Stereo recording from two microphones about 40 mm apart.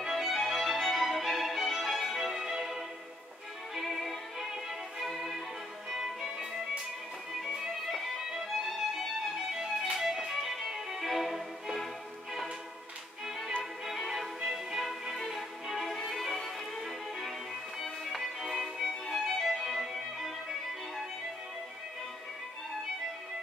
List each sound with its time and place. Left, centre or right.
0.0 s music: centre
4.0 s music: centre
4.5 s violin: centre
5.9 s music: centre
7.3 s music: centre
9.9 s violin: centre
13.6 s music: centre